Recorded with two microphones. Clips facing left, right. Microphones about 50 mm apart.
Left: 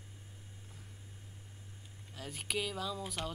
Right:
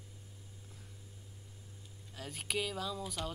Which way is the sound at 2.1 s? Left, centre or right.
Centre.